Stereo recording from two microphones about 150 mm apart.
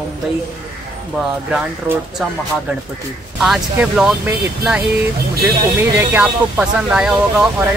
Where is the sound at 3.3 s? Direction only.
Centre (ahead or behind).